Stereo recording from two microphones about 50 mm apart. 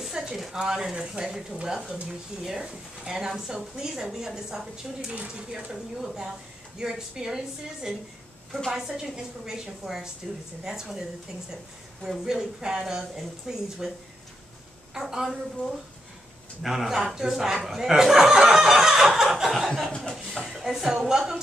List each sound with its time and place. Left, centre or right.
0.4 s speech: centre
5.1 s speech: right
5.5 s speech: centre
8.5 s a woman's voice: centre
8.7 s speech: centre
15.0 s speech: centre
16.6 s speech: centre
20.0 s chuckle: centre
20.4 s a woman's voice: centre